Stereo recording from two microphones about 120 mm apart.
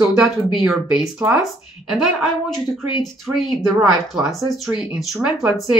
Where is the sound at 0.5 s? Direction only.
Centre (ahead or behind).